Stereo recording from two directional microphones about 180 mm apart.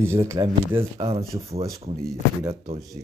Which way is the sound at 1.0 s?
35° right (ahead or behind).